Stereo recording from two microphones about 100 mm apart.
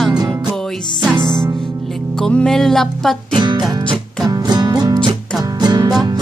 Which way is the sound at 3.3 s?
45° right (ahead or behind).